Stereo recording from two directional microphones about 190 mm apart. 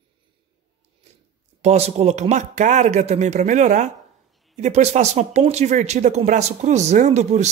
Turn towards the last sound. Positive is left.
turn(degrees=-35)  # may be behind; listen again after turning